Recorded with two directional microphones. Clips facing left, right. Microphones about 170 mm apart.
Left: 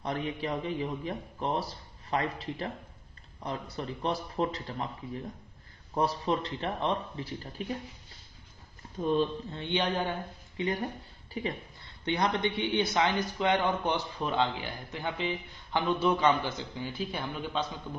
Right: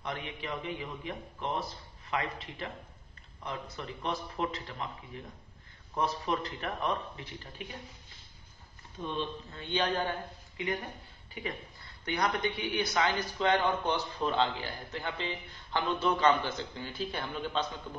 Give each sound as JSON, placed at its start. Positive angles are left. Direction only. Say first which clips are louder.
{"t": 0.0, "sound": "a man's voice", "louder": "left 6 dB", "side_deg": 35}
{"t": 9.0, "sound": "speech", "louder": "left 8 dB", "side_deg": 45}
{"t": 9.5, "sound": "a man's voice", "louder": "left 1 dB", "side_deg": 20}
{"t": 10.6, "sound": "a man's voice", "louder": "left 4 dB", "side_deg": 30}
{"t": 12.0, "sound": "a man's voice", "louder": "left 2 dB", "side_deg": 25}